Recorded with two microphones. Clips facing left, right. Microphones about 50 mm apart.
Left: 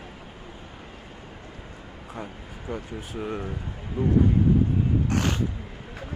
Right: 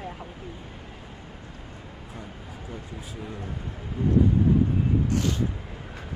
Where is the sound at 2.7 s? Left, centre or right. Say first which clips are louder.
Left 7 dB; left.